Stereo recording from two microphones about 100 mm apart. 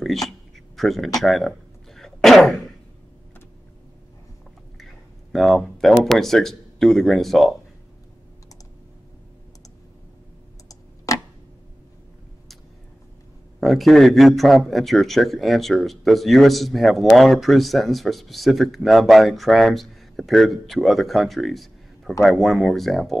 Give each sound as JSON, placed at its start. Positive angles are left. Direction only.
{"t": 0.0, "sound": "a sound", "side_deg": 0}
{"t": 0.7, "sound": "a man's voice", "side_deg": 0}
{"t": 2.0, "sound": "a sound", "side_deg": 0}
{"t": 5.3, "sound": "a man's voice", "side_deg": 0}
{"t": 11.1, "sound": "tick-tock", "side_deg": 35}
{"t": 13.6, "sound": "a man's voice", "side_deg": 0}